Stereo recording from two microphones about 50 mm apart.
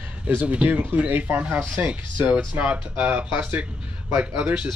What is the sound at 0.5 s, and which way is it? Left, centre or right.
Speech, right.